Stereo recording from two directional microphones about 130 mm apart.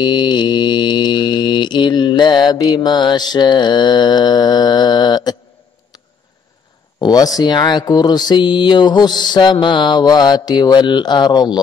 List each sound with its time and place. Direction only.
0.0 s mantra: 35° left (ahead or behind)
7.0 s speech: 30° left (ahead or behind)